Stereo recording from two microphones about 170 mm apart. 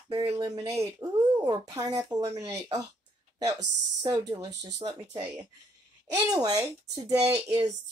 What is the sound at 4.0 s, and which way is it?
Speech, 25° right (ahead or behind).